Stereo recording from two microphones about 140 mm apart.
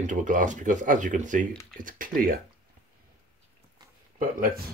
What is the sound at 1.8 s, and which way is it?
Speech, 75° right (ahead or behind).